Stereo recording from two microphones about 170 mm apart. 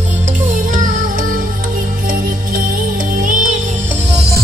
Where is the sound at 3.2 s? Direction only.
50° right (ahead or behind).